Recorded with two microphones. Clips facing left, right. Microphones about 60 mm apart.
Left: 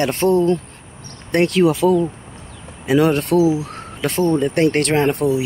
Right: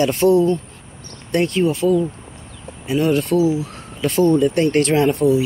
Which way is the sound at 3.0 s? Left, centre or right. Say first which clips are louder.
Right 1 dB; left.